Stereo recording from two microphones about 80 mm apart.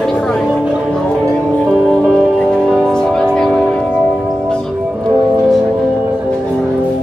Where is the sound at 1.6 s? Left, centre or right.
Centre.